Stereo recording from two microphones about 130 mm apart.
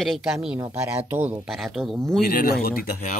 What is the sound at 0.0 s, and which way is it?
Speech, centre (ahead or behind).